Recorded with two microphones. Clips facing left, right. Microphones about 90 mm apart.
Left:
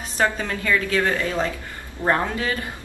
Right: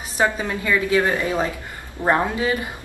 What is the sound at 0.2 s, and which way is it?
A woman's voice, 15° right (ahead or behind).